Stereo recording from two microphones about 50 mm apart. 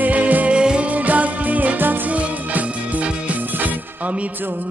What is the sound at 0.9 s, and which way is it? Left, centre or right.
Music, right.